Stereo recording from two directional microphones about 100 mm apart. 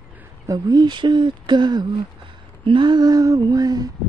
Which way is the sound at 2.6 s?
55° right (ahead or behind).